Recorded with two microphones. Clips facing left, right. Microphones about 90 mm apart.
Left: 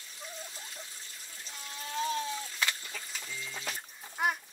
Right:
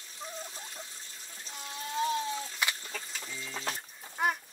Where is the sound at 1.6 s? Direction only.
20° right (ahead or behind).